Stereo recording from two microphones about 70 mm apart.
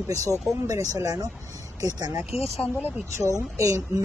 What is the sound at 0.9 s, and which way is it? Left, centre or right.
Speech, right.